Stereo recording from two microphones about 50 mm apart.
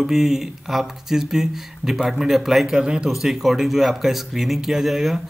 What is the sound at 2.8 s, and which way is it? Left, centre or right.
Speech, centre.